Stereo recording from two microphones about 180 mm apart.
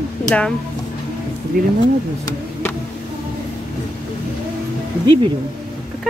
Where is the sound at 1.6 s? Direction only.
50° right (ahead or behind).